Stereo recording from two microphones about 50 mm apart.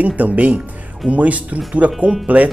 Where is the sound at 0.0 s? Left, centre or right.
Right.